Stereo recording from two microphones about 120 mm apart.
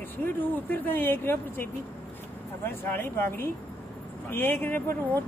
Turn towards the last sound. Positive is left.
turn(degrees=15)  # may be behind; listen again after turning